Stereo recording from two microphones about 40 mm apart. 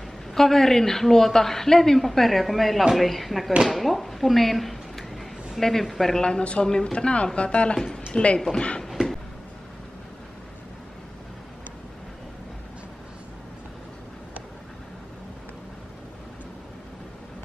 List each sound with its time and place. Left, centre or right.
0.3 s a woman's voice: centre
6.2 s speech: left